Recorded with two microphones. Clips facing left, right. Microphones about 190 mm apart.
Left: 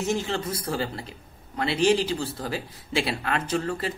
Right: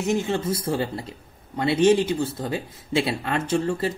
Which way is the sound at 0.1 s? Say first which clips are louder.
Right 7 dB; 20° right (ahead or behind).